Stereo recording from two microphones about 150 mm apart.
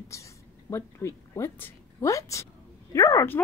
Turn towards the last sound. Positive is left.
turn(degrees=20)  # may be behind; listen again after turning